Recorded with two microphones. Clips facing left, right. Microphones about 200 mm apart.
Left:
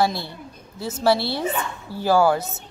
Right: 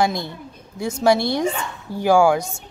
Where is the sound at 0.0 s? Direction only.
15° right (ahead or behind).